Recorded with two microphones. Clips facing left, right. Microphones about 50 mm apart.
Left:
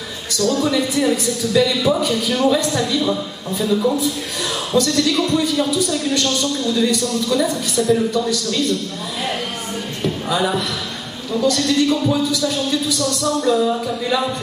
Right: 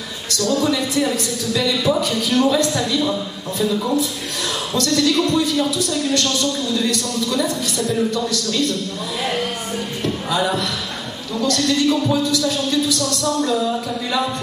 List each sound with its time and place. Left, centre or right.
0.3 s a man's voice: centre
10.0 s a man's voice: centre